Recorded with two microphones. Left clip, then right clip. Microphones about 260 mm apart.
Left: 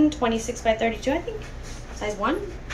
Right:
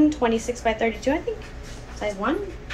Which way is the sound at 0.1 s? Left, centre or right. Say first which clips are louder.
Right 2 dB; centre.